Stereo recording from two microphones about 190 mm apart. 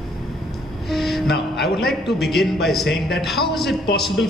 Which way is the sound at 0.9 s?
Centre (ahead or behind).